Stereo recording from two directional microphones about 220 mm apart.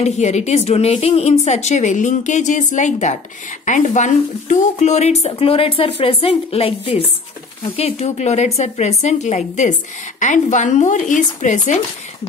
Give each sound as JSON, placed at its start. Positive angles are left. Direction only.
{"t": 0.0, "sound": "a woman's voice", "side_deg": 30}